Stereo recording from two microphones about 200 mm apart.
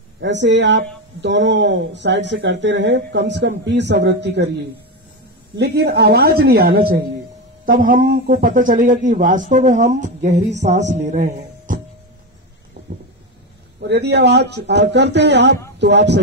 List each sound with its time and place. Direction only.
0.2 s speech: 65° right (ahead or behind)
5.6 s a woman's voice: 55° right (ahead or behind); by 11.8 s 40° right (ahead or behind)
13.7 s speech: 55° right (ahead or behind)